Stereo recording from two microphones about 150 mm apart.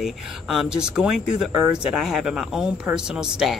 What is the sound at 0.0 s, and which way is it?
Speech, centre (ahead or behind).